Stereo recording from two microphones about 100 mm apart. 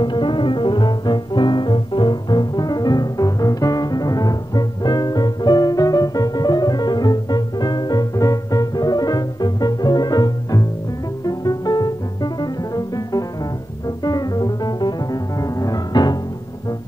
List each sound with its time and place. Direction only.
0.0 s music: 50° left (ahead or behind)